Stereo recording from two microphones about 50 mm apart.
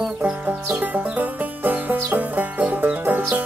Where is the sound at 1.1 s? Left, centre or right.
Right.